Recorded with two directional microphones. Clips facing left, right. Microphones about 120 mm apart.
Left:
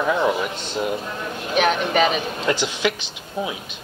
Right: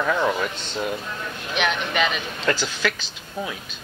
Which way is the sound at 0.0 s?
15° left (ahead or behind).